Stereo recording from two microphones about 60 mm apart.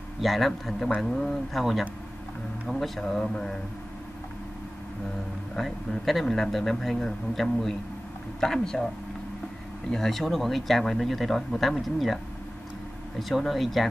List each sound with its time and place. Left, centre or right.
0.2 s speech: centre
5.6 s speech: centre
13.2 s speech: centre